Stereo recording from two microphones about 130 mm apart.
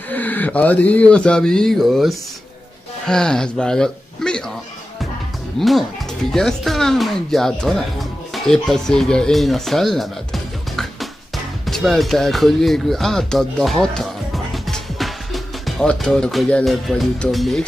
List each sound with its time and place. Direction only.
0.1 s speech: 15° left (ahead or behind)
5.6 s speech: centre (ahead or behind)